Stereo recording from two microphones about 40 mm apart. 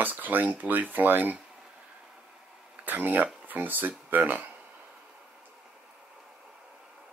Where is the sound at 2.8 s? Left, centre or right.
Right.